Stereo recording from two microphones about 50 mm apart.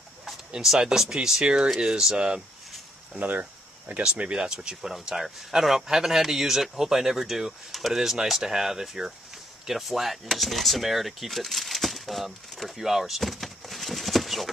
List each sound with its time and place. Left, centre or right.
0.2 s speech: centre
3.2 s speech: right; by 14.5 s centre